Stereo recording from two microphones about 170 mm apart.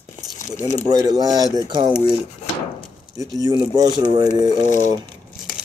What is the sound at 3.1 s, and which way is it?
Speech, 20° right (ahead or behind).